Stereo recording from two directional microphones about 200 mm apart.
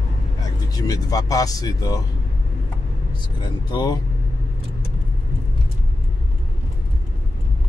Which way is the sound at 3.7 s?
20° left (ahead or behind).